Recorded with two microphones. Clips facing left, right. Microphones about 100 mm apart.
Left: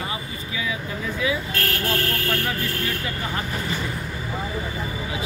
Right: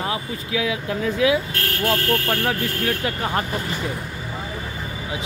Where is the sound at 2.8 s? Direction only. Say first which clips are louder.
Right 4 dB; 70° right (ahead or behind).